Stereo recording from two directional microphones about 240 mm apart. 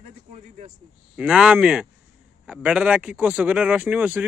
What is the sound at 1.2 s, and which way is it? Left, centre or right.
Speech, centre.